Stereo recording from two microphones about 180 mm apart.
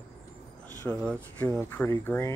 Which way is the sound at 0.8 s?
10° left (ahead or behind).